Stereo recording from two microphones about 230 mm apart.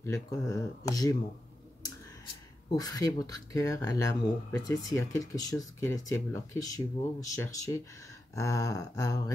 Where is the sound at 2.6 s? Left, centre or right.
Centre.